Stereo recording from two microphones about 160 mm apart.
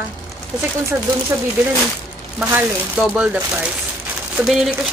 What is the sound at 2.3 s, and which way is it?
Speech, 5° right (ahead or behind).